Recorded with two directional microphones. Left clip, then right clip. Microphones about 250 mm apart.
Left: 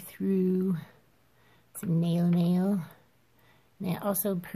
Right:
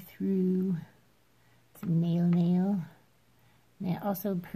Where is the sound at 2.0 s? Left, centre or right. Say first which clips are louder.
Left 1 dB; centre.